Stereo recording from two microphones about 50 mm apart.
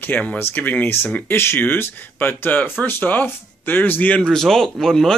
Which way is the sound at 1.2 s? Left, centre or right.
Left.